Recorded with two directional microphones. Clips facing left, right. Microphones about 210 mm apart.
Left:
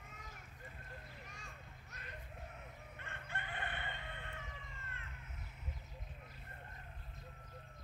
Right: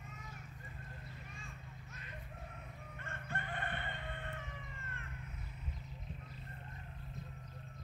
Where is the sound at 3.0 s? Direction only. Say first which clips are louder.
Right 4 dB; 40° right (ahead or behind).